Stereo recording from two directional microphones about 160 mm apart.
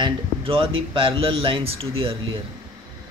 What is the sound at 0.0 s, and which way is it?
Speech, 35° right (ahead or behind).